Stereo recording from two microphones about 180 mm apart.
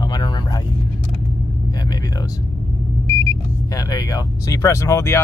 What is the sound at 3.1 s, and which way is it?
Speech, 15° left (ahead or behind).